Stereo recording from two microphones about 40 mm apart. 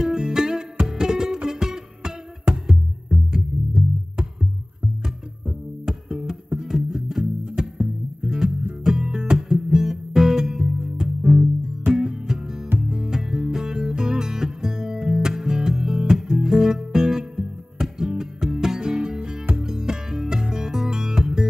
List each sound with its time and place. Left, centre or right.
0.0 s music: centre
5.9 s music: centre